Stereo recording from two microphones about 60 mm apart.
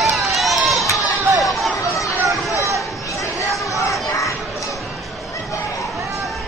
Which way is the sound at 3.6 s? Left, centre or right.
Left.